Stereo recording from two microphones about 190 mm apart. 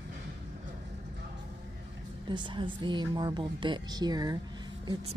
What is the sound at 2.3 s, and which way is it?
A woman's voice, 25° right (ahead or behind).